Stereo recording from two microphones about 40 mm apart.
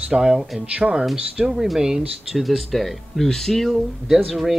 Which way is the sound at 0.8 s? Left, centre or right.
Right.